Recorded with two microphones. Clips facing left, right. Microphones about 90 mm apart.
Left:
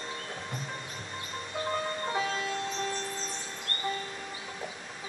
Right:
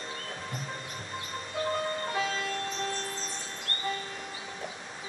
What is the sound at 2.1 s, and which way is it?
Music, 25° left (ahead or behind).